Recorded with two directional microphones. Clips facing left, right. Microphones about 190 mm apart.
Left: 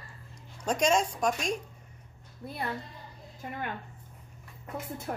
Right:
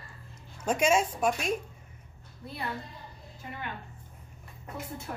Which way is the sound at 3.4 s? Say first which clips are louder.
Left 3 dB; 50° left (ahead or behind).